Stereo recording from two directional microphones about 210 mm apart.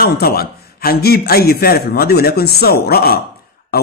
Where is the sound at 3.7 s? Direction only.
45° left (ahead or behind).